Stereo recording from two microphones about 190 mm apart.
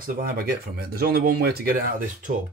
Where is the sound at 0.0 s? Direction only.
55° right (ahead or behind).